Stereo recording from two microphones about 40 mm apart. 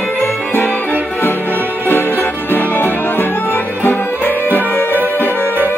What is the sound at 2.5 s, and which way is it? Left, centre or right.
Music, left.